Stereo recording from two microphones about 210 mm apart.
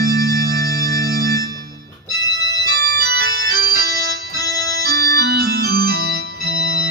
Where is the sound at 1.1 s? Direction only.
45° right (ahead or behind).